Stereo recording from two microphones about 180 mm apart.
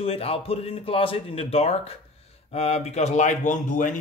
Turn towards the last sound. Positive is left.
turn(degrees=45)  # may be behind; listen again after turning